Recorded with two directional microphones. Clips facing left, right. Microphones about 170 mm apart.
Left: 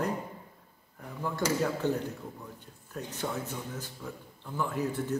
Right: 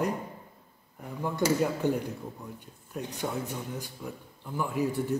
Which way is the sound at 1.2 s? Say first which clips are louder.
Right 3 dB; 15° right (ahead or behind).